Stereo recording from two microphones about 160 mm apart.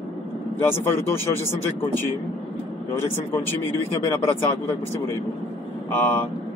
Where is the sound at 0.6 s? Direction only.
15° left (ahead or behind).